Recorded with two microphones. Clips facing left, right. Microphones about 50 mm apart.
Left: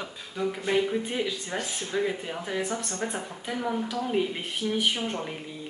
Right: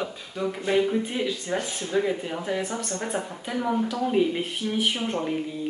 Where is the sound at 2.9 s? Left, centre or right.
Right.